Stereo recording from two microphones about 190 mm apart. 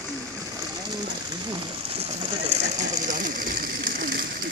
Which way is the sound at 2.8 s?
40° right (ahead or behind).